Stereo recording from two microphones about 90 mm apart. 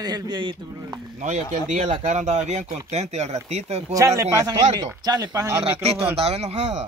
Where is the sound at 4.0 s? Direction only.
35° right (ahead or behind).